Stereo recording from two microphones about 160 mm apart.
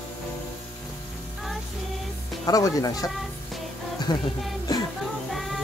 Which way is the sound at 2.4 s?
25° left (ahead or behind).